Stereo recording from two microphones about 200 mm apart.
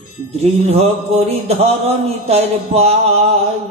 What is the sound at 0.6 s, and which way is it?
A man's voice, 30° right (ahead or behind).